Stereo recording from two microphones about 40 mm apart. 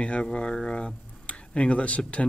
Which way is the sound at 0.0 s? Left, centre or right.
Left.